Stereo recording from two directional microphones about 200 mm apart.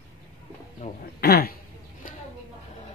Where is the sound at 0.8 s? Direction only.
35° left (ahead or behind).